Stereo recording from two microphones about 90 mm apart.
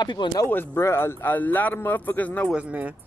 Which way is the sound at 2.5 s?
15° right (ahead or behind).